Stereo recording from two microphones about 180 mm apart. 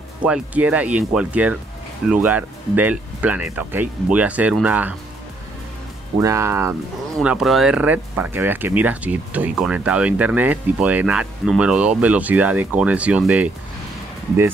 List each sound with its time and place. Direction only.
0.2 s speech: 5° right (ahead or behind)
6.1 s speech: 15° right (ahead or behind)
7.2 s speech: centre (ahead or behind)